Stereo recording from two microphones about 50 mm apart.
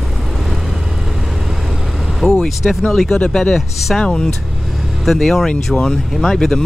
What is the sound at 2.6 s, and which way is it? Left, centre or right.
Speech, centre.